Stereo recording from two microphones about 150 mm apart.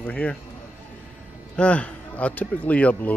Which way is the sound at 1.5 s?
10° left (ahead or behind).